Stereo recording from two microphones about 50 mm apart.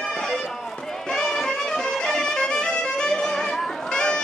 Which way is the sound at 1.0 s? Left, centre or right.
Centre.